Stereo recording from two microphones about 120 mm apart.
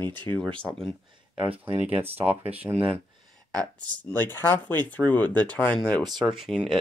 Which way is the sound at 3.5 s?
10° left (ahead or behind).